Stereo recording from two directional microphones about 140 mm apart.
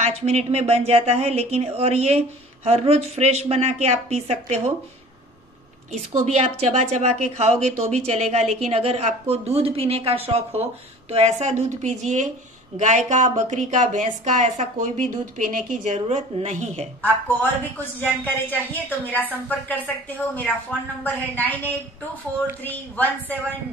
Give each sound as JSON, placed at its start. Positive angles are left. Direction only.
{"t": 0.0, "sound": "speech", "side_deg": -50}
{"t": 6.2, "sound": "a woman's voice", "side_deg": -50}
{"t": 17.0, "sound": "a woman's voice", "side_deg": 15}